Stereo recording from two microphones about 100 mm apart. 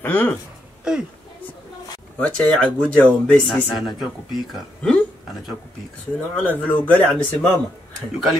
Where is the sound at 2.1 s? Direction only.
10° left (ahead or behind).